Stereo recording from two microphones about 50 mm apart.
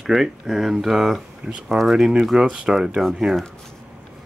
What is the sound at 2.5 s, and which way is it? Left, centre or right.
Speech, centre.